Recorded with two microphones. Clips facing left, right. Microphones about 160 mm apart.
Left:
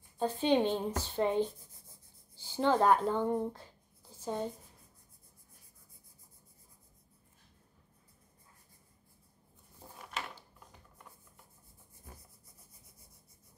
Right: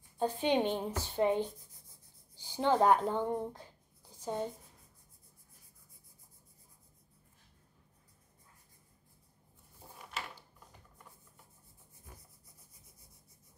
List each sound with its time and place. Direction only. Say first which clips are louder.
0.2 s a woman's voice: left 2 dB; 15° right (ahead or behind)